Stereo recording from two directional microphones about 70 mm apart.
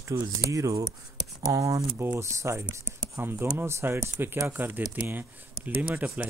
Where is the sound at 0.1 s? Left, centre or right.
Right.